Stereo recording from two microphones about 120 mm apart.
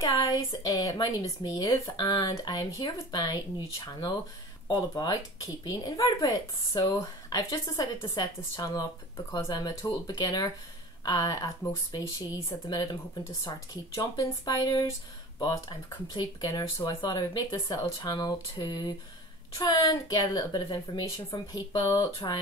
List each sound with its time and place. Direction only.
0.0 s speech: 30° left (ahead or behind)